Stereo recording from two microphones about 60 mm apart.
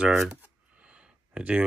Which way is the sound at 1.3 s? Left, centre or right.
Centre.